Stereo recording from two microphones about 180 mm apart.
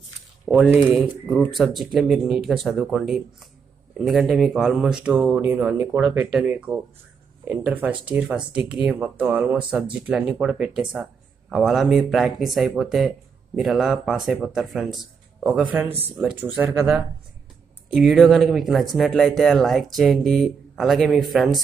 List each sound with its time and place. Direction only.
0.5 s speech: 10° right (ahead or behind)